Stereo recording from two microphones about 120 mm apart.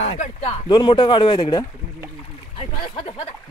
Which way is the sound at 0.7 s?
40° left (ahead or behind).